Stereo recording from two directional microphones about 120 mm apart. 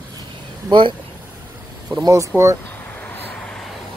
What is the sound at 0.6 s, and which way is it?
Speech, 45° right (ahead or behind).